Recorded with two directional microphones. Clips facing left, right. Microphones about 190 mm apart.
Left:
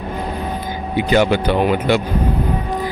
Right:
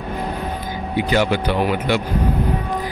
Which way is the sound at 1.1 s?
25° left (ahead or behind).